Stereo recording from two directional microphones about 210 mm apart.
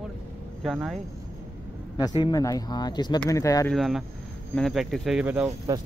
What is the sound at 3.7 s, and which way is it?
Speech, centre (ahead or behind).